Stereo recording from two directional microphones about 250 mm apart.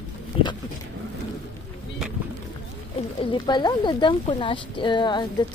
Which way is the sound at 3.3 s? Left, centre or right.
Centre.